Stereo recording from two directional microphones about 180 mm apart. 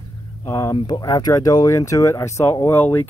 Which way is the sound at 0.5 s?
15° left (ahead or behind).